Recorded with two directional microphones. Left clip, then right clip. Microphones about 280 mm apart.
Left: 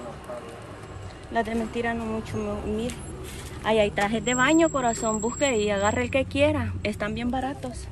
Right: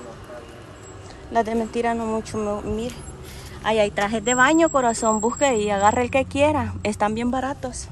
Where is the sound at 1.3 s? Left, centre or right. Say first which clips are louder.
Right 5 dB; centre.